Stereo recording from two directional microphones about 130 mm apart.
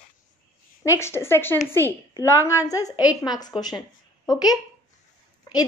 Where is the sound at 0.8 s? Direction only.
20° left (ahead or behind).